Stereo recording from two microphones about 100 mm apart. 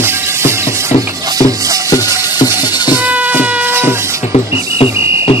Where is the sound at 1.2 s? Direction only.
35° right (ahead or behind).